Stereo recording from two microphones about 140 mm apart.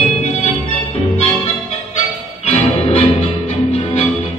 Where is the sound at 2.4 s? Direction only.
45° left (ahead or behind).